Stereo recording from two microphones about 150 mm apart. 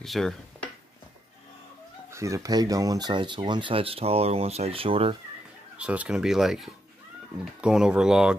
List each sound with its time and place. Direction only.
0.0 s speech: centre (ahead or behind)
2.1 s speech: 20° right (ahead or behind); by 5.1 s 40° right (ahead or behind)
5.8 s speech: 10° right (ahead or behind)